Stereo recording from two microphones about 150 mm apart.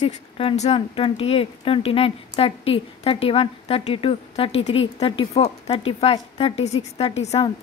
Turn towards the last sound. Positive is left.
turn(degrees=45)  # may be behind; listen again after turning